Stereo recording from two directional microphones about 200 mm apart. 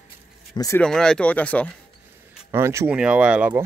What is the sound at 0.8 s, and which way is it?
Speech, 5° left (ahead or behind).